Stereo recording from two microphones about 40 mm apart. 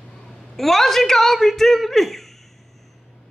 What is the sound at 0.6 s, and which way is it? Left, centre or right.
Speech, centre.